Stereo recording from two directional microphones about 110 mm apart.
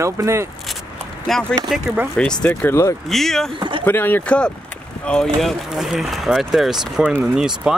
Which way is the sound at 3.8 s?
15° left (ahead or behind).